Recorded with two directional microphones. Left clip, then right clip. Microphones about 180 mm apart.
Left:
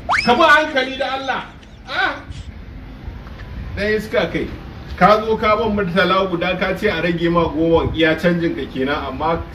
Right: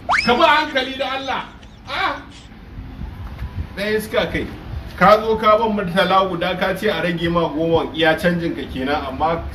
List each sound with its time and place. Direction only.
0.1 s speech: centre (ahead or behind)
3.7 s a man's voice: 10° left (ahead or behind)